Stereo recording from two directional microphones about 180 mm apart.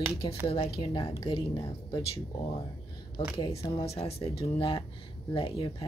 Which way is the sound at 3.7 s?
35° left (ahead or behind).